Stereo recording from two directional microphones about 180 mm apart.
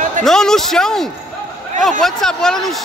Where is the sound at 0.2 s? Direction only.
Centre (ahead or behind).